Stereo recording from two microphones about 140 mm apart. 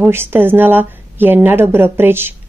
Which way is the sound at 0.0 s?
15° right (ahead or behind).